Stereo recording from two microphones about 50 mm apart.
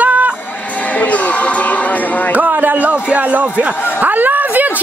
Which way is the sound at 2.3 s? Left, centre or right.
Right.